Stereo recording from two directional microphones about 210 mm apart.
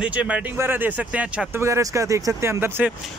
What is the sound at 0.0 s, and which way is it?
Speech, 5° right (ahead or behind).